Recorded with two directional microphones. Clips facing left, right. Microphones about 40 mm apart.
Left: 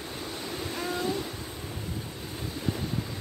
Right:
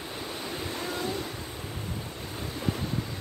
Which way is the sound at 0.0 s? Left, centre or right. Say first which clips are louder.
Even; centre.